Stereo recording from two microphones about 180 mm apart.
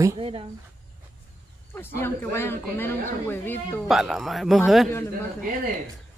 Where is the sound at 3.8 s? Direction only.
Centre (ahead or behind).